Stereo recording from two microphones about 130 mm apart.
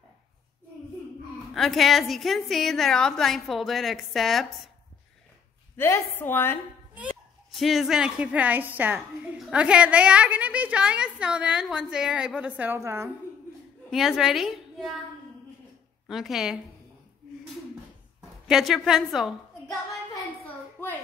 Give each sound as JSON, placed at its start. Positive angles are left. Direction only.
{"t": 1.5, "sound": "a woman's voice", "side_deg": 0}
{"t": 5.8, "sound": "a woman's voice", "side_deg": 20}
{"t": 7.5, "sound": "a woman's voice", "side_deg": 0}
{"t": 13.8, "sound": "a woman's voice", "side_deg": -5}
{"t": 16.1, "sound": "a woman's voice", "side_deg": 0}
{"t": 18.5, "sound": "a woman's voice", "side_deg": 0}